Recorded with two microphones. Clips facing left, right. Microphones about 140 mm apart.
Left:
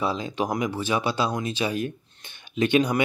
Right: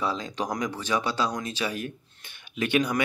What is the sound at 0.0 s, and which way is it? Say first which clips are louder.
Speech: left 3 dB; 15° left (ahead or behind).